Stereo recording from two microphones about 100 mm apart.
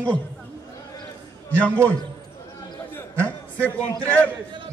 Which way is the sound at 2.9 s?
15° left (ahead or behind).